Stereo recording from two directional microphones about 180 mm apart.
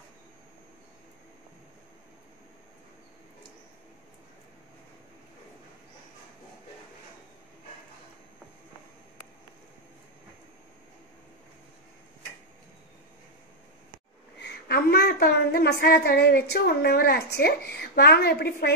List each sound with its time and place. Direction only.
14.4 s a woman's voice: 65° left (ahead or behind)